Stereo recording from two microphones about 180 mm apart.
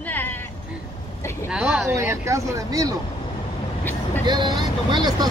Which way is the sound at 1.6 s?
10° right (ahead or behind).